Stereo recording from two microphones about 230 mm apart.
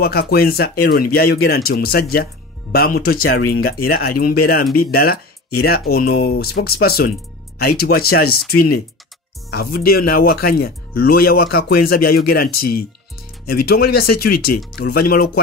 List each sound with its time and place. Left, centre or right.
0.0 s speech: left
9.5 s speech: left